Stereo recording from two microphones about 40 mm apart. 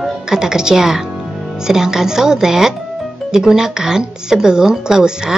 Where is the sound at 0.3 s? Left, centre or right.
Centre.